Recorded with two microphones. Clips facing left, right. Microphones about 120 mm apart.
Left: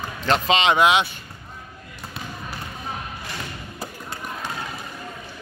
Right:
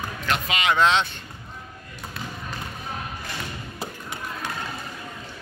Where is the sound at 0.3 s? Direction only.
25° left (ahead or behind).